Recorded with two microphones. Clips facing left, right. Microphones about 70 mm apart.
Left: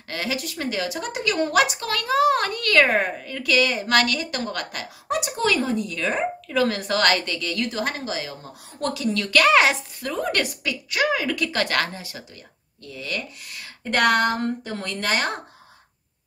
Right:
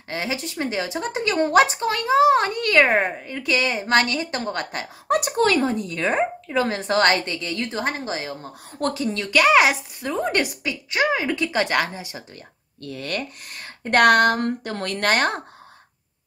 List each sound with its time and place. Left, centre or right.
0.1 s a woman's voice: right
5.1 s a woman's voice: right
9.3 s a woman's voice: centre
9.9 s a woman's voice: right
12.8 s speech: right